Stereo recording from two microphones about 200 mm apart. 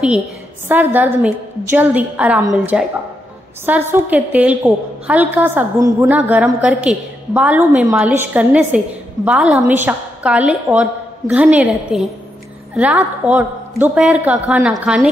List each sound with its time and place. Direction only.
0.7 s a woman's voice: 10° right (ahead or behind)